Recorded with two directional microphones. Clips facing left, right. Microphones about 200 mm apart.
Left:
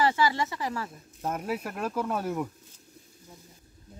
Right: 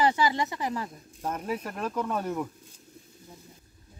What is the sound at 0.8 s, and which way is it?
Speech, 5° left (ahead or behind).